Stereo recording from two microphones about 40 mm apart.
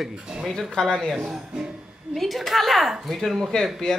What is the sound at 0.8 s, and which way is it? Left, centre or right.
Speech, centre.